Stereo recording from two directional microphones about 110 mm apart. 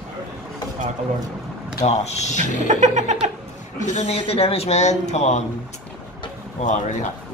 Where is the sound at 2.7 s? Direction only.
90° right.